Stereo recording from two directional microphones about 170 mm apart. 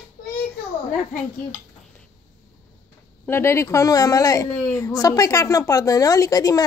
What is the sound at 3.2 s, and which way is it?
Speech, 15° left (ahead or behind).